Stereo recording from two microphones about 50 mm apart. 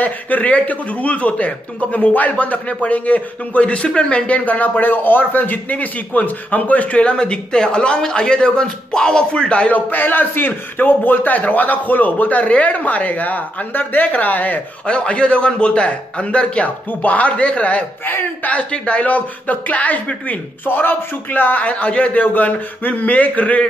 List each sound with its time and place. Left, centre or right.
0.0 s speech: left
14.9 s a man's voice: left
20.6 s speech: left